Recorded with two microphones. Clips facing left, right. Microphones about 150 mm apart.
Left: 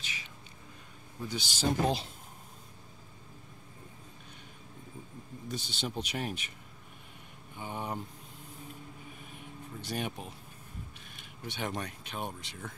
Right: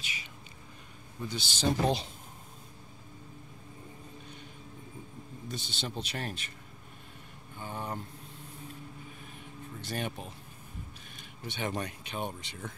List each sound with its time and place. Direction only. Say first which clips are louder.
1.3 s speech: right 1 dB; 10° left (ahead or behind)
5.5 s speech: left 2 dB; 10° left (ahead or behind)
7.5 s a sound: left 1 dB; 15° left (ahead or behind)
9.8 s speech: even; 10° left (ahead or behind)
11.4 s speech: right 2 dB; 5° left (ahead or behind)